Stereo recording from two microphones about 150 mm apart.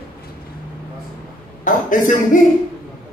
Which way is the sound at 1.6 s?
60° left (ahead or behind).